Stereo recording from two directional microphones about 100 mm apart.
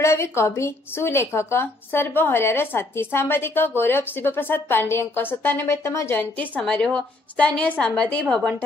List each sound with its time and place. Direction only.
0.0 s a woman's voice: 30° left (ahead or behind)
6.5 s a woman's voice: 5° left (ahead or behind)